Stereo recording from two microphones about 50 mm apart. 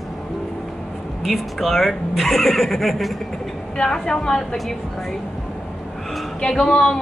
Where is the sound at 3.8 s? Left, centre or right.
Centre.